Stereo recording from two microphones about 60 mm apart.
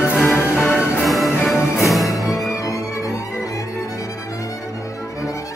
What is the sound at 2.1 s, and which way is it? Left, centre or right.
Music, left.